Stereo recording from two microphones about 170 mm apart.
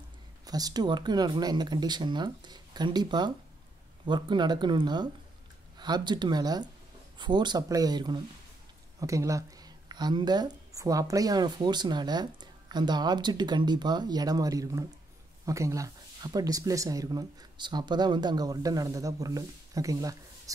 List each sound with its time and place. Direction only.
0.5 s speech: 20° right (ahead or behind)